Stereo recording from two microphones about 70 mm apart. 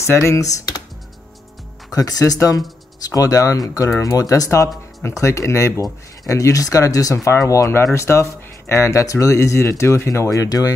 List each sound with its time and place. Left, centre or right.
0.0 s speech: left
1.9 s speech: left
7.7 s speech: left